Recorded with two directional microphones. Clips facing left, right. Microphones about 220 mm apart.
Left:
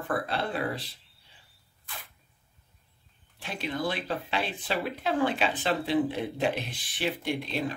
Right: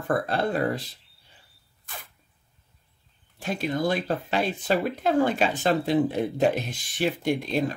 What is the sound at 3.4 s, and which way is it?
Speech, 45° right (ahead or behind).